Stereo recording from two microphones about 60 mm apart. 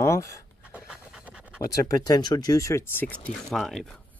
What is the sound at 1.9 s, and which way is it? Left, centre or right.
Speech, left.